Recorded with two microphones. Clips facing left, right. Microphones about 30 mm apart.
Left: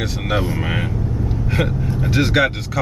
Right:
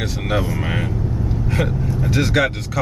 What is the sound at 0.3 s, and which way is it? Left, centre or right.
Speech, centre.